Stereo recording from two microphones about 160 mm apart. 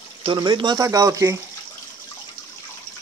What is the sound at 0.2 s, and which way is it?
Speech, 30° right (ahead or behind).